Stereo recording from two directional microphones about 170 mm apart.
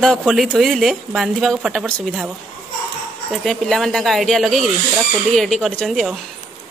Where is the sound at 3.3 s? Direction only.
Centre (ahead or behind).